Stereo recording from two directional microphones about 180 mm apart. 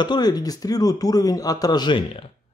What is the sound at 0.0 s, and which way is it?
A man's voice, 25° left (ahead or behind).